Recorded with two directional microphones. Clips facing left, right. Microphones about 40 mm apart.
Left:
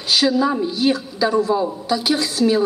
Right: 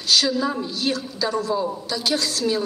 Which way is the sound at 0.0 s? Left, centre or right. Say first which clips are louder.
Left 4 dB; centre.